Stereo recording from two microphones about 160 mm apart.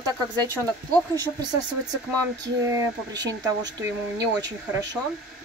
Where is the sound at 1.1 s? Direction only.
25° right (ahead or behind).